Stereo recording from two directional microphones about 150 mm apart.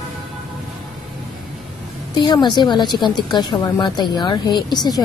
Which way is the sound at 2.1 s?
30° left (ahead or behind).